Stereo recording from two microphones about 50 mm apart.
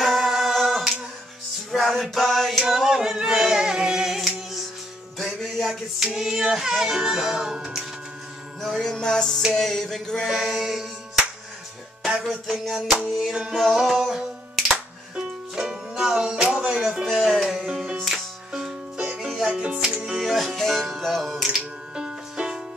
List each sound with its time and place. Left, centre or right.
0.0 s a capella: centre
1.7 s a sound: centre
2.7 s singing: centre
5.2 s music: centre
5.9 s music: centre
8.5 s music: centre
8.8 s music: centre
10.3 s music: centre
13.3 s music: centre
13.6 s music: centre
19.4 s music: right
20.2 s music: centre
21.9 s music: centre